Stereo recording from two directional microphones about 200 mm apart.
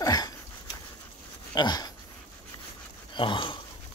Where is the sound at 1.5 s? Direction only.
20° left (ahead or behind).